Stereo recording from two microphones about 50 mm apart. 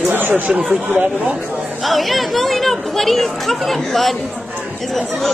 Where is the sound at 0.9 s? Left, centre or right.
Right.